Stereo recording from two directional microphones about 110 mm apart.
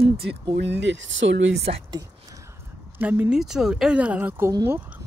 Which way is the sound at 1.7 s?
65° right (ahead or behind).